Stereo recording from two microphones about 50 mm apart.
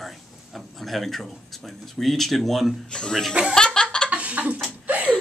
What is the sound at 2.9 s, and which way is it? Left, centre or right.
Speech, centre.